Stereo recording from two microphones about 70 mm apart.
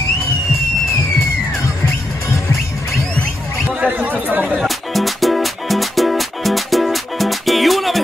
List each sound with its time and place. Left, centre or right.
3.8 s chatter: right
4.6 s music: centre